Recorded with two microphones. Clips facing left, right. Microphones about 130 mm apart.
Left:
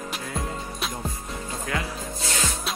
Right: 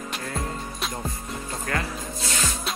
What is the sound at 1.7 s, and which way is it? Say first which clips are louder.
Speech: right 1 dB; 10° left (ahead or behind).